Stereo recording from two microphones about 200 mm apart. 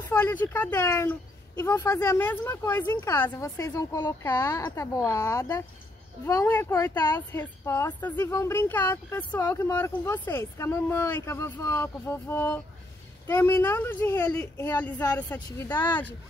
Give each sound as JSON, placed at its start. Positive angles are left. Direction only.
{"t": 0.1, "sound": "speech", "side_deg": 10}